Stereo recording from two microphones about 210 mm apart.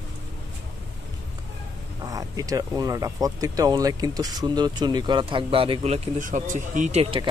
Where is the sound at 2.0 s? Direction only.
15° right (ahead or behind).